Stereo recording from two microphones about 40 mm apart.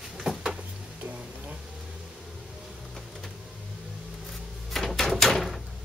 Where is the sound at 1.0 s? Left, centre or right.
Right.